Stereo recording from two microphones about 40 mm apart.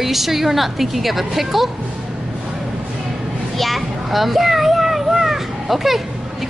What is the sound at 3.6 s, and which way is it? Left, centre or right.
Children playing, centre.